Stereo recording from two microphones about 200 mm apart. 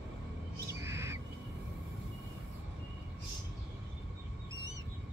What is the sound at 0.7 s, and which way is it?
Squawk, 15° right (ahead or behind).